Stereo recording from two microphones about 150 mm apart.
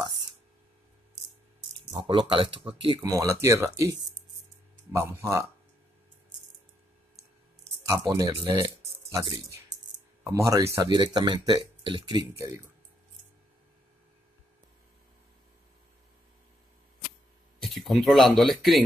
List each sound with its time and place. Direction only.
2.0 s speech: 35° right (ahead or behind)
3.0 s speech: 20° right (ahead or behind)
4.9 s speech: 20° right (ahead or behind)
8.1 s speech: 20° right (ahead or behind)
10.2 s speech: 20° right (ahead or behind)
17.6 s speech: centre (ahead or behind)